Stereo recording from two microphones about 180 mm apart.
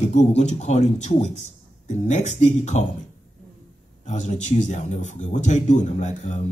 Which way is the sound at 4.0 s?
40° left (ahead or behind).